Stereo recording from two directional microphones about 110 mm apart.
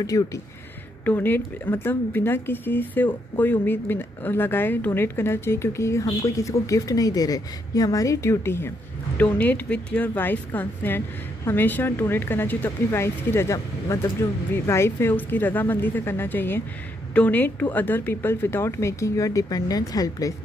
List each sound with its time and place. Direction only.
0.0 s speech: 30° left (ahead or behind)
1.0 s a woman's voice: 15° left (ahead or behind); by 20.3 s 35° left (ahead or behind)